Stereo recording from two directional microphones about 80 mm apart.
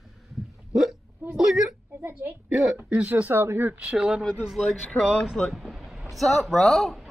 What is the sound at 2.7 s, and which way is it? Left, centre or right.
Speech, centre.